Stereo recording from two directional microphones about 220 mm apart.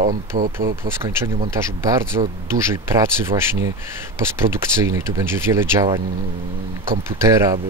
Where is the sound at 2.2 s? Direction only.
25° right (ahead or behind).